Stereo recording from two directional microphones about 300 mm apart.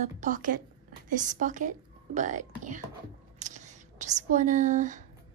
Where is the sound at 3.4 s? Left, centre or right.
Right.